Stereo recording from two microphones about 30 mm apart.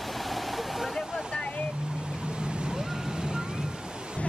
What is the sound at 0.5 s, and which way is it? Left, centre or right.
Waterfall, centre.